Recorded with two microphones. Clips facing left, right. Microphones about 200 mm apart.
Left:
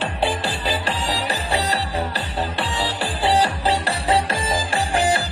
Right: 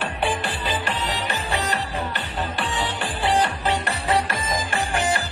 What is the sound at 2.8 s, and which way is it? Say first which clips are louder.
Music: left 4 dB; 30° left (ahead or behind).